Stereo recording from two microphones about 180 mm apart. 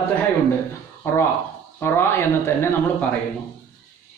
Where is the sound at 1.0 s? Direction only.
15° left (ahead or behind).